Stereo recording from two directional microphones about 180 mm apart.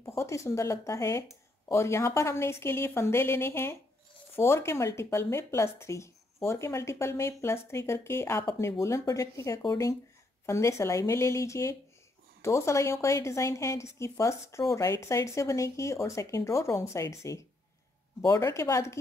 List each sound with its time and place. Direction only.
0.2 s speech: 15° left (ahead or behind)